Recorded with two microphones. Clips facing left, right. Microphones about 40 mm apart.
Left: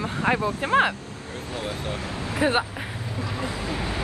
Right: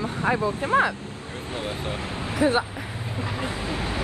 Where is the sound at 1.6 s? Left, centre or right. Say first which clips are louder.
Even; right.